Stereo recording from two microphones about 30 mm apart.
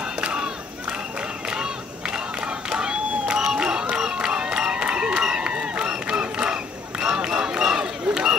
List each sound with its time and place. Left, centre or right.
0.2 s battle cry: right
2.7 s crowd: right
3.9 s a sound: right
5.2 s run: right
5.9 s crowd: right